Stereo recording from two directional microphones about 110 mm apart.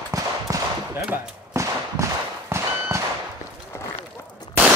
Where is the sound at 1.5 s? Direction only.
25° right (ahead or behind).